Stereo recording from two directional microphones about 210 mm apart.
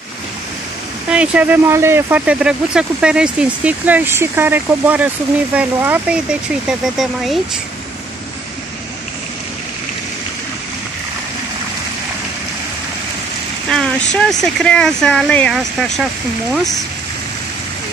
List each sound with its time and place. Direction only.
1.0 s speech: 5° right (ahead or behind)
13.7 s speech: centre (ahead or behind)